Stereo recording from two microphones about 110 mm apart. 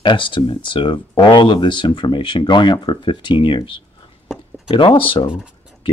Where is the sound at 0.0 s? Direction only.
45° left (ahead or behind).